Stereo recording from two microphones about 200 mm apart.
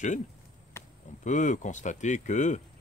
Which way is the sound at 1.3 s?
40° left (ahead or behind).